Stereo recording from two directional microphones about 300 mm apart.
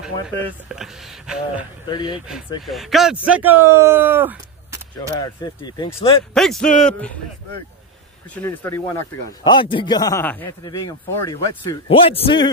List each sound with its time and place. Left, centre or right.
0.7 s speech: centre
1.9 s speech: centre
2.6 s speech: centre
5.2 s speech: centre
6.3 s speech: centre
8.4 s speech: centre